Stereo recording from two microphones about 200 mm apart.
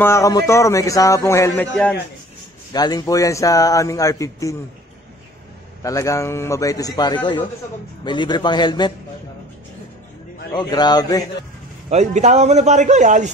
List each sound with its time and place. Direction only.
0.0 s speech: 15° left (ahead or behind)
2.7 s speech: 20° left (ahead or behind)
5.8 s a man's voice: 15° left (ahead or behind)
10.5 s a man's voice: 20° left (ahead or behind)
11.9 s a man's voice: 35° right (ahead or behind)